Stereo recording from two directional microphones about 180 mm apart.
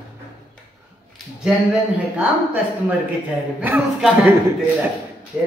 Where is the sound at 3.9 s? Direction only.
Centre (ahead or behind).